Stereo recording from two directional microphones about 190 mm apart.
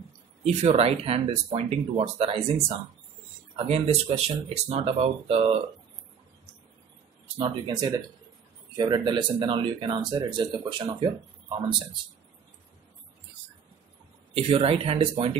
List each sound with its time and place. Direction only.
0.4 s speech: 35° right (ahead or behind)
3.5 s speech: 30° right (ahead or behind)
7.3 s speech: 25° right (ahead or behind)
14.3 s speech: 30° right (ahead or behind)